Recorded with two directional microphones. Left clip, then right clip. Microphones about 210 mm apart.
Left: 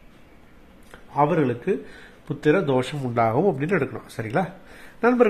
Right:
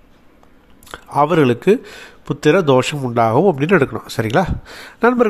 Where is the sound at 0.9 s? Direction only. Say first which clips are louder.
Right 6 dB; 40° right (ahead or behind).